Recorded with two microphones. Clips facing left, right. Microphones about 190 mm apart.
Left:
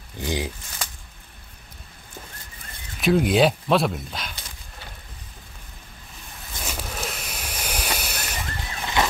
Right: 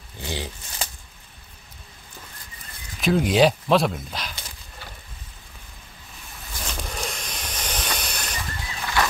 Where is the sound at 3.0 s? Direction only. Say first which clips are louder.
Even; centre (ahead or behind).